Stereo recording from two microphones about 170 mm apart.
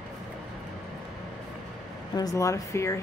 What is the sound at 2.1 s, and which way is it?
Speech, 20° left (ahead or behind).